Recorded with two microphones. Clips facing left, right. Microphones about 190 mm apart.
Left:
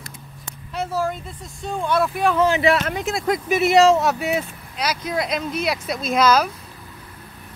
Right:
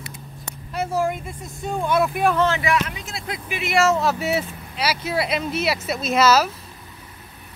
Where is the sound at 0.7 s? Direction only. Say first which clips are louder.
Right 1 dB; 10° right (ahead or behind).